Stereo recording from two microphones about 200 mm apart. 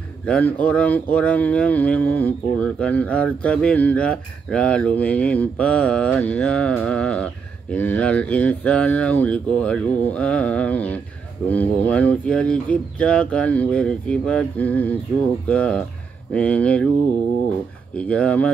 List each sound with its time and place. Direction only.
0.3 s speech: 5° left (ahead or behind)
17.9 s speech: 5° left (ahead or behind)